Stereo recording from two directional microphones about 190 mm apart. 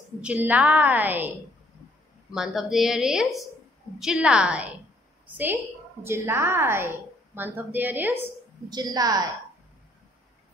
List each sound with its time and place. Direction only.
0.2 s a woman's voice: 5° right (ahead or behind)
2.3 s a woman's voice: centre (ahead or behind)
6.0 s a woman's voice: 10° right (ahead or behind)
8.6 s a woman's voice: 20° right (ahead or behind)